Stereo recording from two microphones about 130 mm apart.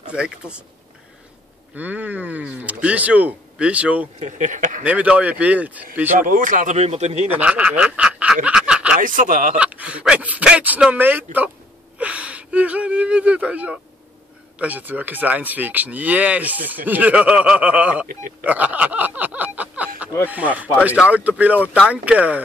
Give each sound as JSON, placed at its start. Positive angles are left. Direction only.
{"t": 0.1, "sound": "speech", "side_deg": -10}
{"t": 1.8, "sound": "speech", "side_deg": -10}
{"t": 4.2, "sound": "speech", "side_deg": -75}
{"t": 4.8, "sound": "speech", "side_deg": -10}
{"t": 6.1, "sound": "speech", "side_deg": -90}
{"t": 7.2, "sound": "speech", "side_deg": -10}
{"t": 8.5, "sound": "snicker", "side_deg": -5}
{"t": 8.9, "sound": "speech", "side_deg": -90}
{"t": 9.6, "sound": "speech", "side_deg": -10}
{"t": 18.4, "sound": "a sound", "side_deg": -10}
{"t": 20.2, "sound": "speech", "side_deg": -10}